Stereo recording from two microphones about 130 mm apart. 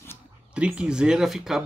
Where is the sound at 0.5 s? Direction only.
10° right (ahead or behind).